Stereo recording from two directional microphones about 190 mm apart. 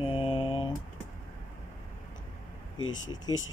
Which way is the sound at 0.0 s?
30° left (ahead or behind).